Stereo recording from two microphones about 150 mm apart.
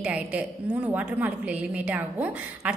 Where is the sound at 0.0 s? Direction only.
10° right (ahead or behind).